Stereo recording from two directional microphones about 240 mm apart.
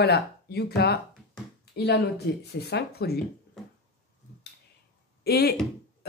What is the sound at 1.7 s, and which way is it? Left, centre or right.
Speech, left.